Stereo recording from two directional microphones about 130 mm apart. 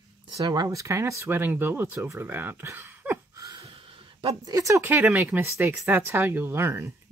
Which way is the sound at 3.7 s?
40° right (ahead or behind).